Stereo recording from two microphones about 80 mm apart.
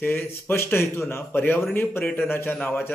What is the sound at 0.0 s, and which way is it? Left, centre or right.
A man's voice, left.